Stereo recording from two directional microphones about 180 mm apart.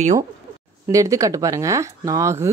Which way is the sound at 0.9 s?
20° right (ahead or behind).